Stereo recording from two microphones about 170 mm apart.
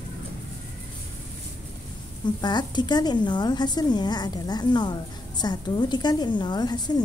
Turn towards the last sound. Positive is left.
turn(degrees=25)  # may be behind; listen again after turning